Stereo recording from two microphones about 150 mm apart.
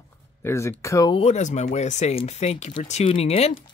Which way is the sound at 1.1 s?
45° left (ahead or behind).